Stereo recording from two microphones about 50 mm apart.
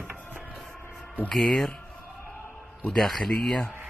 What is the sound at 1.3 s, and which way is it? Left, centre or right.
Speech, centre.